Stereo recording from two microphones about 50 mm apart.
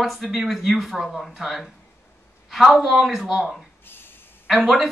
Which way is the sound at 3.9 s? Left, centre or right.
Left.